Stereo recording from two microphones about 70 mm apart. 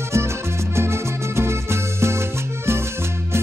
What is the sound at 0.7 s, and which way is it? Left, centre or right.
Music, right.